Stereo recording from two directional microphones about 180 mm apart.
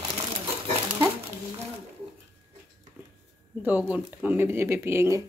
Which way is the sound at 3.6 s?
10° right (ahead or behind).